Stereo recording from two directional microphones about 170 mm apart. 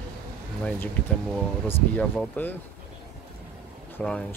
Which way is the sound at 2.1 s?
10° left (ahead or behind).